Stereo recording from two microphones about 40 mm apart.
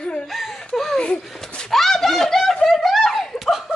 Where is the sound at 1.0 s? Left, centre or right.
Left.